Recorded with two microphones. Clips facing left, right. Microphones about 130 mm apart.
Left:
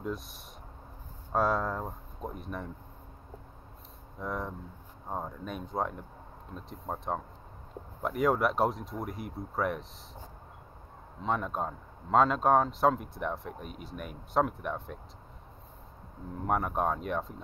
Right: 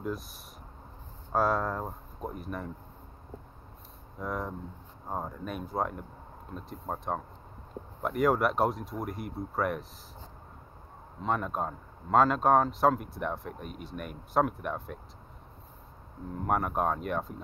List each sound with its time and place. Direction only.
0.0 s speech: centre (ahead or behind)
4.2 s speech: centre (ahead or behind)
11.2 s speech: centre (ahead or behind)
16.4 s speech: centre (ahead or behind)